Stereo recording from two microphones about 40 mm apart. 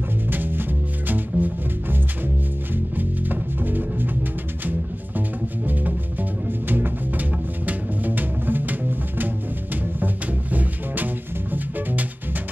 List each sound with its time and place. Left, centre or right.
0.3 s music: right
3.0 s music: right
6.7 s music: right
9.9 s music: right